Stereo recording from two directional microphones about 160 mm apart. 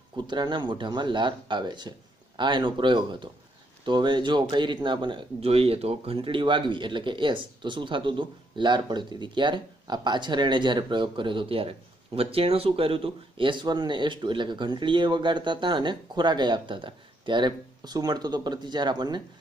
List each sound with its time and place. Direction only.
0.3 s speech: 30° right (ahead or behind)